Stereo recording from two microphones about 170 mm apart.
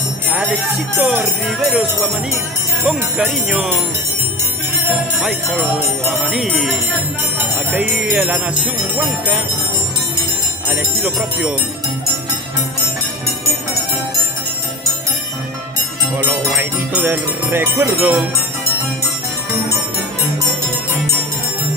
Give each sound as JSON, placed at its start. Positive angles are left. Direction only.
{"t": 0.9, "sound": "music", "side_deg": 0}
{"t": 4.8, "sound": "music", "side_deg": -5}
{"t": 7.3, "sound": "speech", "side_deg": -10}
{"t": 10.7, "sound": "music", "side_deg": -5}
{"t": 16.2, "sound": "music", "side_deg": -10}